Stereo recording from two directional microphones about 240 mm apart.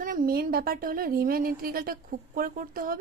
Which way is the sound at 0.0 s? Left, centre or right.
Right.